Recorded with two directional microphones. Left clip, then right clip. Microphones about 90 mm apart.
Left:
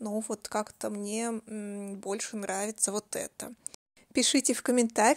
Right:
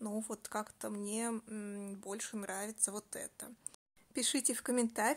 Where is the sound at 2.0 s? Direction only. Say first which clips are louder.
Left 10 dB; 50° left (ahead or behind); by 3.5 s 85° left.